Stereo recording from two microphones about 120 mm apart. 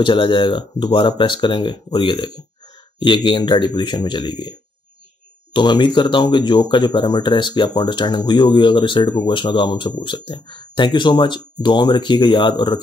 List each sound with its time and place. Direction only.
0.0 s speech: 45° left (ahead or behind)